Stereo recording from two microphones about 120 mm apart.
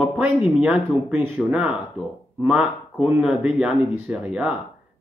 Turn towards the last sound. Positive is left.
turn(degrees=-5)  # may be behind; listen again after turning